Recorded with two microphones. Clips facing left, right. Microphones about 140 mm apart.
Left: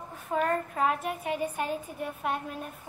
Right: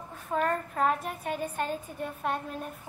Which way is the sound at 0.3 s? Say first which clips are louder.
Left 1 dB; centre (ahead or behind).